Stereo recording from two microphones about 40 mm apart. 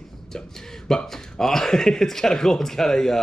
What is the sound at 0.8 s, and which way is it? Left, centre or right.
Speech, centre.